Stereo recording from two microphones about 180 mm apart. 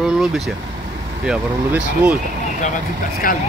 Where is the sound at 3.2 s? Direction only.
50° left (ahead or behind).